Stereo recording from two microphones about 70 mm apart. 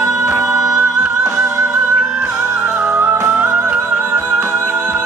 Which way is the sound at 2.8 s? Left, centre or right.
Right.